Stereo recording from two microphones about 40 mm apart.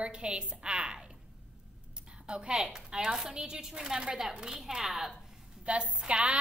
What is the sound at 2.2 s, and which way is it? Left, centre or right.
A woman's voice, right.